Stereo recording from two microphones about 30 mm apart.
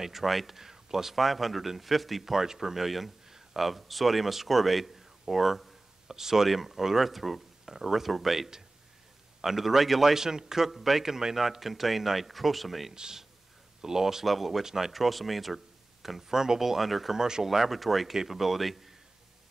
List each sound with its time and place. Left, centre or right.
0.0 s speech: centre
1.1 s speech: centre
2.3 s speech: centre
10.1 s speech: centre
12.9 s speech: right
14.2 s speech: centre
14.6 s speech: centre
14.9 s speech: centre
17.2 s speech: right
17.5 s speech: centre